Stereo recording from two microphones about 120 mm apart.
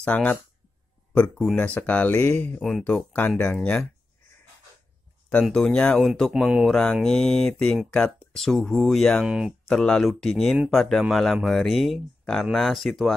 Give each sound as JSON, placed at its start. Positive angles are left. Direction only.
{"t": 0.0, "sound": "speech", "side_deg": 10}
{"t": 2.6, "sound": "speech", "side_deg": 5}
{"t": 2.9, "sound": "speech", "side_deg": 15}
{"t": 5.3, "sound": "speech", "side_deg": 5}